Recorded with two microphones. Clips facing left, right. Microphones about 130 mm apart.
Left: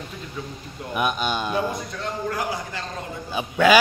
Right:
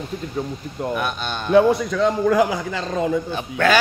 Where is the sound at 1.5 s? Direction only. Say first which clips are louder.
Right 11 dB; 85° right.